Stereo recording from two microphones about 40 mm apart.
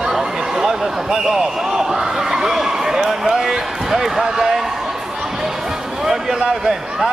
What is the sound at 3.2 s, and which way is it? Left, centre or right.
Basketball bounce, centre.